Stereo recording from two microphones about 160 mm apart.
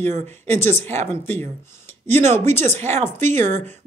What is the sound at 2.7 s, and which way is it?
Speech, 45° right (ahead or behind).